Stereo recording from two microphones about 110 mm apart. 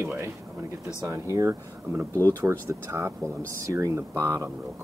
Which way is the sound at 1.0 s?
25° right (ahead or behind).